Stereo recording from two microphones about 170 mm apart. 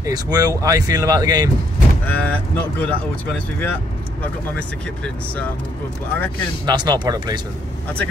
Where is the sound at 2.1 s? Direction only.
10° left (ahead or behind).